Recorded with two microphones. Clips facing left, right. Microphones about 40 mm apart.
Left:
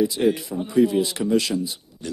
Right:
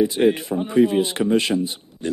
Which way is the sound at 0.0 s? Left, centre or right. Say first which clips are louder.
Right 3 dB; right.